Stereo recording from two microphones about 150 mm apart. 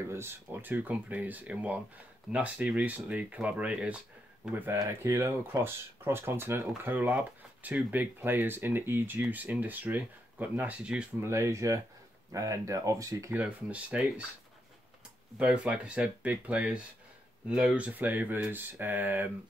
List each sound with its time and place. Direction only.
0.1 s speech: 15° right (ahead or behind)
11.2 s speech: 20° right (ahead or behind)
13.4 s speech: 10° right (ahead or behind)
15.3 s speech: 5° right (ahead or behind)